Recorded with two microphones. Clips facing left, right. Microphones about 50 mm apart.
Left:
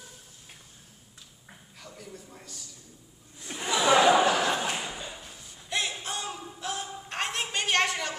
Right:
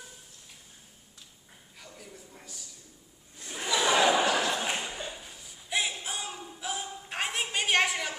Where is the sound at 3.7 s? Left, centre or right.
Left.